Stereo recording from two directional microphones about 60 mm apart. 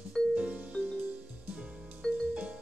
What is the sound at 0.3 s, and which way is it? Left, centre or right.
Music, centre.